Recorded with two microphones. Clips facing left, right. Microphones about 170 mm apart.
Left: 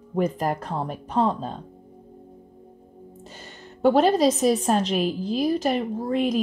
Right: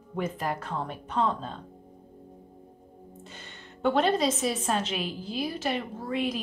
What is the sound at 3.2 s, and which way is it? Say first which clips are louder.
A woman's voice: left 4 dB; 40° left (ahead or behind).